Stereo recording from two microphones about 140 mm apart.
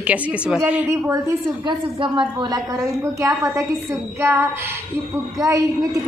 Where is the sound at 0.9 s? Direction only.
20° right (ahead or behind).